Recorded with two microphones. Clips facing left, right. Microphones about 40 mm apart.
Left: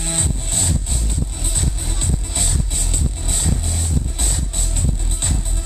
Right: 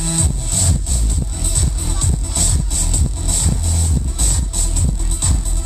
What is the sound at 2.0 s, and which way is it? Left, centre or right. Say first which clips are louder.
Music: right 2 dB; left.